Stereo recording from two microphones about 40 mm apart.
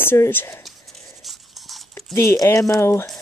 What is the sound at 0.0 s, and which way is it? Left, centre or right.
Speech, left.